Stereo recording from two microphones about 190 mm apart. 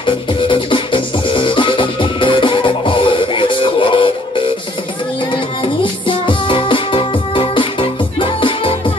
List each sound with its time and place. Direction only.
0.0 s music: 25° left (ahead or behind)